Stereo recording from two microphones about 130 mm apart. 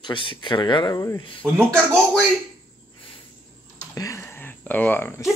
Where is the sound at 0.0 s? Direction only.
40° left (ahead or behind).